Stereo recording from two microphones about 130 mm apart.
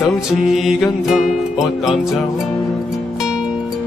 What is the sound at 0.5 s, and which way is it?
Music, 5° right (ahead or behind).